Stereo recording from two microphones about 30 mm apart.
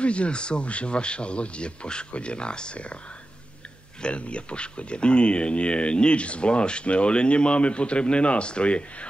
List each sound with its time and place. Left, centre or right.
0.0 s speech: left
4.0 s speech: left